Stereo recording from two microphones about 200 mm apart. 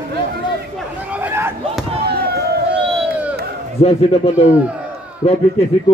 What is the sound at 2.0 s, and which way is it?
Fireworks, 55° right (ahead or behind).